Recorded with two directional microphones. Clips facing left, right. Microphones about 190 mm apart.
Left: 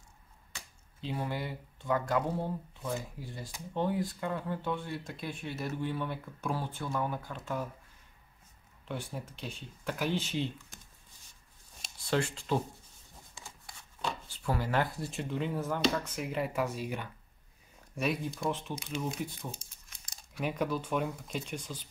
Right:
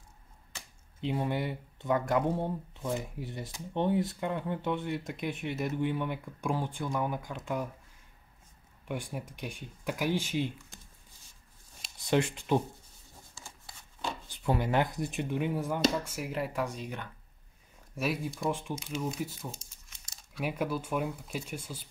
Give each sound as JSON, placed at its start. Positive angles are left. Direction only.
{"t": 1.0, "sound": "speech", "side_deg": -20}
{"t": 8.8, "sound": "speech", "side_deg": -15}
{"t": 12.0, "sound": "speech", "side_deg": -20}
{"t": 14.3, "sound": "speech", "side_deg": -20}
{"t": 17.9, "sound": "speech", "side_deg": -5}